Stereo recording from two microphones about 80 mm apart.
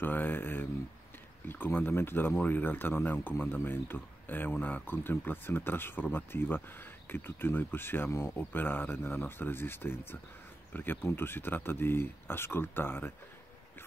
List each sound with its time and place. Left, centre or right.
0.0 s speech: left